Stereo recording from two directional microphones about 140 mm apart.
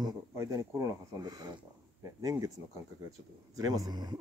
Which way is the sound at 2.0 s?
25° right (ahead or behind).